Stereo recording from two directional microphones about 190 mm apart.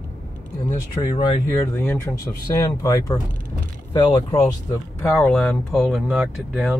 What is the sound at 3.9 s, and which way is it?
Speech, 25° left (ahead or behind).